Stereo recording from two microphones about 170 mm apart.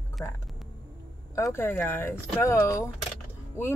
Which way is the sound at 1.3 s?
15° left (ahead or behind).